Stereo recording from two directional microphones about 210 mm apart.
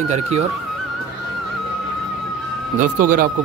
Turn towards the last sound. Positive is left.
turn(degrees=-40)  # may be behind; listen again after turning